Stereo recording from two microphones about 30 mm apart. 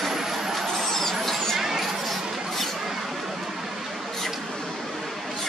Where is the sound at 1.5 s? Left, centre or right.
Centre.